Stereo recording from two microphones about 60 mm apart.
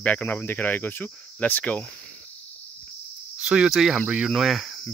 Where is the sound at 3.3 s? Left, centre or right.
Centre.